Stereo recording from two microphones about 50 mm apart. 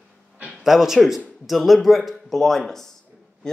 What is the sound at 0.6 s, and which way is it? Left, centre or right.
Speech, centre.